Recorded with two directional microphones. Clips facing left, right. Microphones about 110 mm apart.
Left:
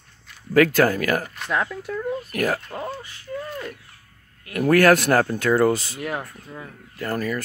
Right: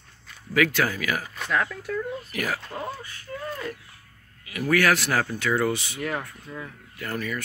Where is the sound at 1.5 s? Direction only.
20° left (ahead or behind).